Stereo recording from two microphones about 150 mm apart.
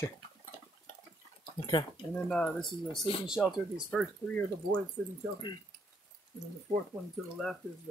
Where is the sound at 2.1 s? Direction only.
5° left (ahead or behind).